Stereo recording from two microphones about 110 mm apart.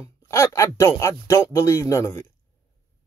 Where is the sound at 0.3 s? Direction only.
25° left (ahead or behind).